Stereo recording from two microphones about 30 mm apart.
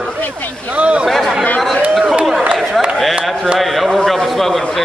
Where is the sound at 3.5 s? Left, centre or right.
Centre.